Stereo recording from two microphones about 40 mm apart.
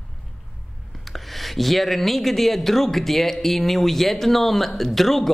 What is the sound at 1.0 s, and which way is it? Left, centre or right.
Speech, centre.